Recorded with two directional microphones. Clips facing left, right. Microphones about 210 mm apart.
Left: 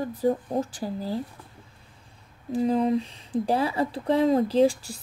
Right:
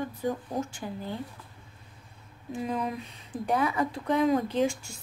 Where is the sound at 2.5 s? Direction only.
30° left (ahead or behind).